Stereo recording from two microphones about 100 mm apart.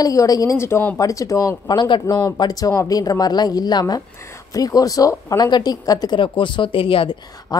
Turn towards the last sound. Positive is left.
turn(degrees=65)  # may be behind; listen again after turning